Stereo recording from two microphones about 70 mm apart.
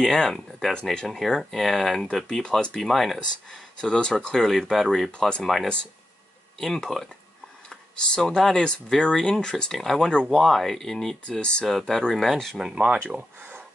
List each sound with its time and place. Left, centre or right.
0.0 s speech: centre
12.7 s speech: centre